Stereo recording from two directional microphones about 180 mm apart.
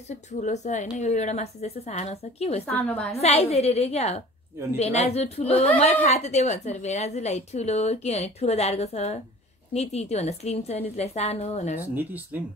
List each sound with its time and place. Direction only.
0.3 s a woman's voice: 40° left (ahead or behind)
2.6 s a woman's voice: 10° left (ahead or behind)
3.1 s a woman's voice: 35° left (ahead or behind)
11.9 s speech: 10° right (ahead or behind)